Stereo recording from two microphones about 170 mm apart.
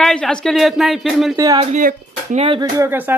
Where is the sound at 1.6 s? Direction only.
50° right (ahead or behind).